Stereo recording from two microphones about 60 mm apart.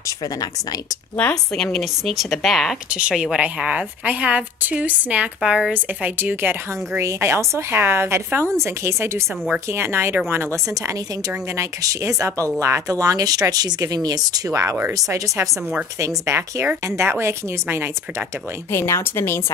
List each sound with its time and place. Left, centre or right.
1.3 s speech: centre
2.9 s a woman's voice: centre
5.7 s a woman's voice: right
7.0 s a woman's voice: right
11.5 s speech: right
13.0 s speech: right
16.0 s a woman's voice: right
18.7 s speech: left